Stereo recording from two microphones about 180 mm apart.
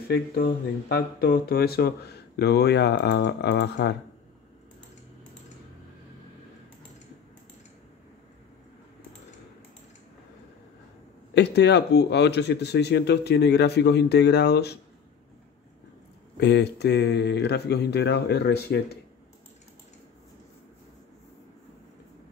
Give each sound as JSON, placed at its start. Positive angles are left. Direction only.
{"t": 0.1, "sound": "speech", "side_deg": 60}
{"t": 11.3, "sound": "speech", "side_deg": 70}
{"t": 16.3, "sound": "speech", "side_deg": 70}